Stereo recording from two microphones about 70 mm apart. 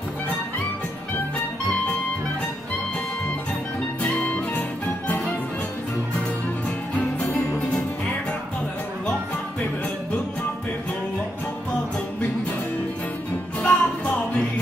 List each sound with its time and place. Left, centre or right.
4.3 s music: left
7.2 s music: centre
13.6 s music: left